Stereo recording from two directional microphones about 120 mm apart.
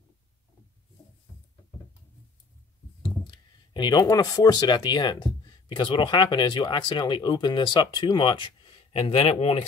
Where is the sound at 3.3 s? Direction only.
40° left (ahead or behind).